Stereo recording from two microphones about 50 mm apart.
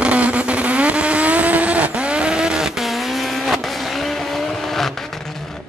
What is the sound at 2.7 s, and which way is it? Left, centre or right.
Vehicle, centre.